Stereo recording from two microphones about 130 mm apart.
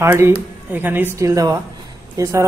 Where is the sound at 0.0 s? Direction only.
15° right (ahead or behind).